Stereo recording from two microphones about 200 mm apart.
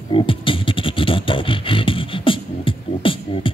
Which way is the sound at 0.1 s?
25° left (ahead or behind).